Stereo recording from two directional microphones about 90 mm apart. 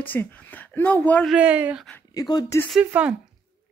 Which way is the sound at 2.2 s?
50° left (ahead or behind).